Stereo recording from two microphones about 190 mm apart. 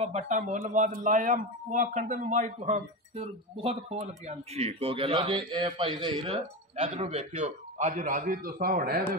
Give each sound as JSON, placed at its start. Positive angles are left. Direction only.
{"t": 0.0, "sound": "speech", "side_deg": -35}
{"t": 6.2, "sound": "speech", "side_deg": -35}